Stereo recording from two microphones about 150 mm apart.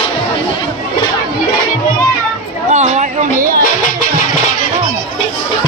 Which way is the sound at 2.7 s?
50° right (ahead or behind).